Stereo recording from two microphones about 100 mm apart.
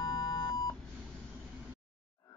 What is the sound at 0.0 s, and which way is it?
Beep, 40° left (ahead or behind).